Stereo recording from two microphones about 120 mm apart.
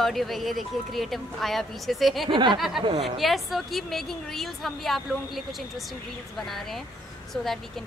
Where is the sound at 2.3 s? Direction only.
40° right (ahead or behind).